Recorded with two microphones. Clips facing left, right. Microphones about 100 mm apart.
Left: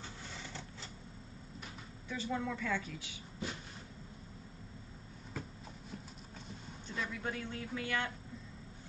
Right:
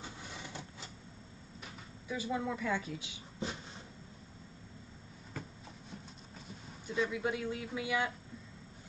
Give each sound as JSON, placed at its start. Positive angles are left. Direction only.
{"t": 0.0, "sound": "vehicle", "side_deg": -15}
{"t": 2.0, "sound": "speech", "side_deg": -10}
{"t": 6.9, "sound": "speech", "side_deg": -10}